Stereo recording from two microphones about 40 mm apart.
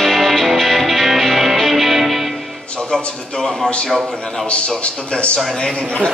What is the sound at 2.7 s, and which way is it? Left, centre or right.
Music, left.